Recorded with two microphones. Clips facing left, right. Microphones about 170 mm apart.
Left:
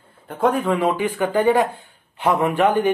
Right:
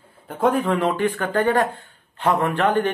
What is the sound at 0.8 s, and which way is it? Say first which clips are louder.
Speech: left 1 dB; 10° left (ahead or behind).